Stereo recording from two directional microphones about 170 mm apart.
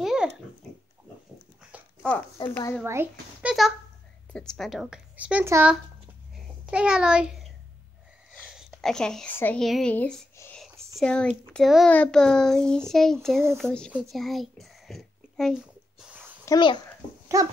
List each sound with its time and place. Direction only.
0.0 s pig: 5° right (ahead or behind)
2.4 s speech: 30° left (ahead or behind)
2.8 s speech: 15° right (ahead or behind)
4.3 s a child's voice: 5° left (ahead or behind)
10.3 s whispering: 15° left (ahead or behind)
11.0 s a child's voice: 5° left (ahead or behind)
14.1 s a sound: centre (ahead or behind)
16.4 s a child's voice: 25° left (ahead or behind)
17.3 s dog: 20° right (ahead or behind)